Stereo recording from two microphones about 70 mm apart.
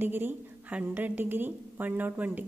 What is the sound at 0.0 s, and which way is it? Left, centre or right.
A woman's voice, right.